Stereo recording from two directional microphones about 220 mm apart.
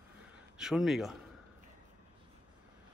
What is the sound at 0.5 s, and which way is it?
Speech, centre (ahead or behind).